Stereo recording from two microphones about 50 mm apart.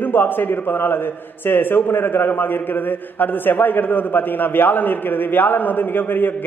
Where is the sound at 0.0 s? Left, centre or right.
Left.